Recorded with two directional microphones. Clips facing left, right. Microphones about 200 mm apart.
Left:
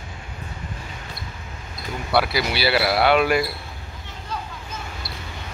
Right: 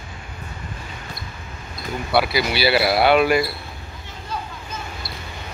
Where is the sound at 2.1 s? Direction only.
Centre (ahead or behind).